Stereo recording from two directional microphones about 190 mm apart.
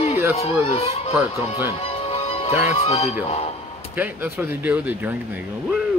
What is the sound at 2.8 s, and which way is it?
Speech, 30° left (ahead or behind).